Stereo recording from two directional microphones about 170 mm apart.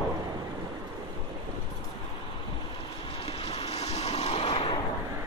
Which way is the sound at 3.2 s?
35° left (ahead or behind).